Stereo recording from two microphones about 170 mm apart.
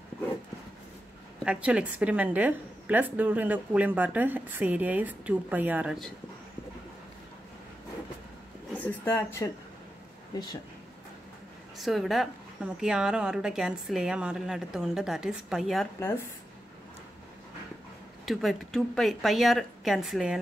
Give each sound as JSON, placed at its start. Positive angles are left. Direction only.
{"t": 1.4, "sound": "a woman's voice", "side_deg": -5}
{"t": 8.7, "sound": "speech", "side_deg": 10}
{"t": 11.8, "sound": "a woman's voice", "side_deg": 0}
{"t": 18.2, "sound": "a woman's voice", "side_deg": 0}